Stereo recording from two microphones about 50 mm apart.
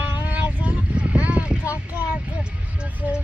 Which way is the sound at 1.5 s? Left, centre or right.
Right.